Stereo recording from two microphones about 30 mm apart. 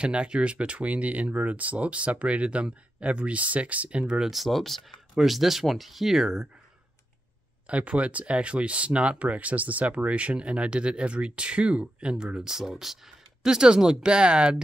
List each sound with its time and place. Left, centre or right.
0.3 s speech: right
4.3 s speech: centre
5.1 s speech: centre
7.6 s speech: right
12.5 s speech: centre
13.5 s speech: right